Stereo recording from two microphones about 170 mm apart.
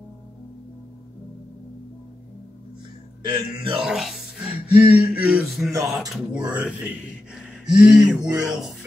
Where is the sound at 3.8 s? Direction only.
Centre (ahead or behind).